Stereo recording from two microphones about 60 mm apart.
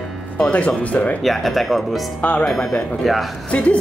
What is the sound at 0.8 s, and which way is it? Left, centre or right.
Speech, left.